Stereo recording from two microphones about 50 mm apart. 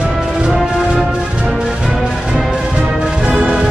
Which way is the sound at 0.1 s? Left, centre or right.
Centre.